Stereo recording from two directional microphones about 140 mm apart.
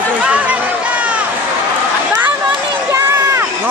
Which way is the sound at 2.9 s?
20° right (ahead or behind).